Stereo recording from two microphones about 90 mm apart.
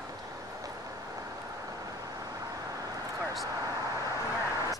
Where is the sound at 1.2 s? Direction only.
40° right (ahead or behind).